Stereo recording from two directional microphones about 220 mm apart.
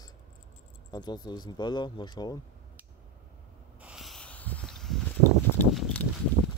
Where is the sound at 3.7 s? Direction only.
5° right (ahead or behind).